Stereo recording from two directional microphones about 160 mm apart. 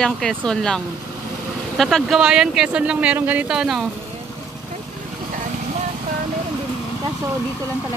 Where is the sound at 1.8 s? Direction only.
Centre (ahead or behind).